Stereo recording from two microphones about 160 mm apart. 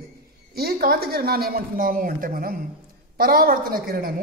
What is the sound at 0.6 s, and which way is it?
Speech, 70° right (ahead or behind).